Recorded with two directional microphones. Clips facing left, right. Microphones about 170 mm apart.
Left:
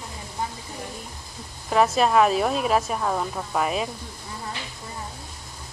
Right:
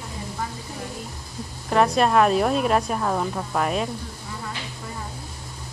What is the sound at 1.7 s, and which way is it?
A woman's voice, centre (ahead or behind).